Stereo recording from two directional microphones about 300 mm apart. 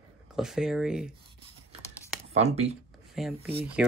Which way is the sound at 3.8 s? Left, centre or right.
Centre.